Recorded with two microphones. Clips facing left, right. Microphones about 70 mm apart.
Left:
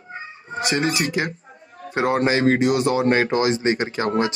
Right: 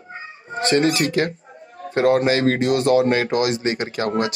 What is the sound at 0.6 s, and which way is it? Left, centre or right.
A man's voice, centre.